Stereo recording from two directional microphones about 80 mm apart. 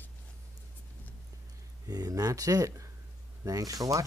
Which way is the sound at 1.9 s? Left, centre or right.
Right.